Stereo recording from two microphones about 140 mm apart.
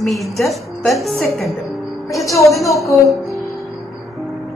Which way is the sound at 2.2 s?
20° left (ahead or behind).